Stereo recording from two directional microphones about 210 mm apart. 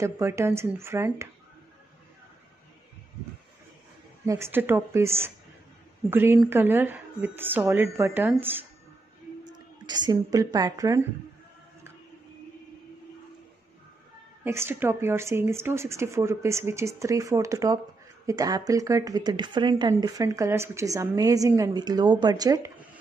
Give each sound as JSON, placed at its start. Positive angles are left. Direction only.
{"t": 0.0, "sound": "speech", "side_deg": -15}
{"t": 4.3, "sound": "speech", "side_deg": -10}
{"t": 9.8, "sound": "speech", "side_deg": -20}
{"t": 14.4, "sound": "speech", "side_deg": -10}